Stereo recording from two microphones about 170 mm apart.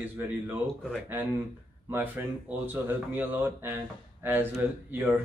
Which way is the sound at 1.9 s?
10° right (ahead or behind).